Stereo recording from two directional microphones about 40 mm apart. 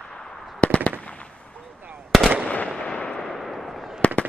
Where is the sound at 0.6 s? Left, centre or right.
Left.